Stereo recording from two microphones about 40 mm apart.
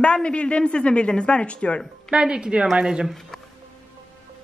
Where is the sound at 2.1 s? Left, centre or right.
Right.